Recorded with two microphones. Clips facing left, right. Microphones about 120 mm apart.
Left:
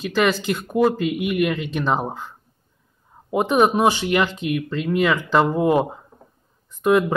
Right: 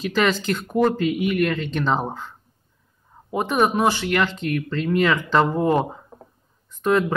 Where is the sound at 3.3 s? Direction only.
15° left (ahead or behind).